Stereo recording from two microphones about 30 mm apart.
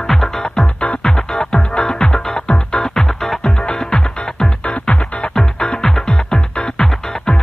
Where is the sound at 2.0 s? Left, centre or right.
Left.